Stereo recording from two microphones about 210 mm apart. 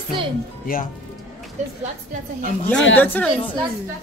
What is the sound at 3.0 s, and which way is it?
Speech, 10° left (ahead or behind).